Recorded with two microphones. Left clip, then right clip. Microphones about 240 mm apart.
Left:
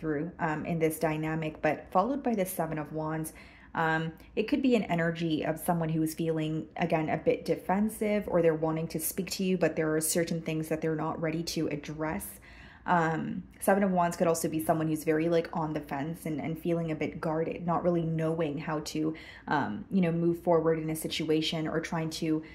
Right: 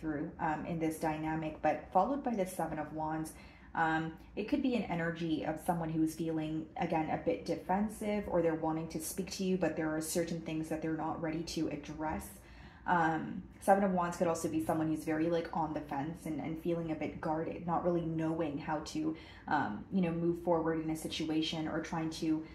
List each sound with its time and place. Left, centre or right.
0.4 s a woman's voice: left
13.7 s a woman's voice: left